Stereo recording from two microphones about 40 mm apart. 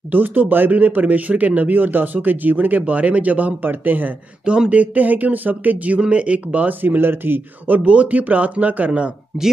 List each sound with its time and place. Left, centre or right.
0.1 s speech: right
4.5 s speech: right
5.9 s speech: right
6.8 s speech: right
7.8 s speech: right